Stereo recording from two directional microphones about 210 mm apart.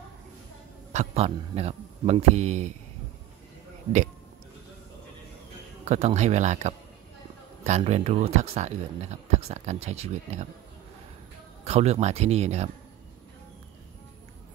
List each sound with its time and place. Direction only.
0.9 s speech: 30° right (ahead or behind)
5.9 s speech: 30° right (ahead or behind)
11.6 s speech: 30° right (ahead or behind)